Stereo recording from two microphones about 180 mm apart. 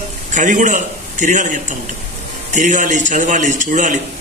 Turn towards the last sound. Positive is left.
turn(degrees=-45)  # may be behind; listen again after turning